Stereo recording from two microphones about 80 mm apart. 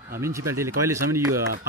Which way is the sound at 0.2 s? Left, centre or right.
Right.